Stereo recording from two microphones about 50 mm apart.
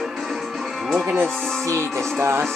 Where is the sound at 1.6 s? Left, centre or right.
Right.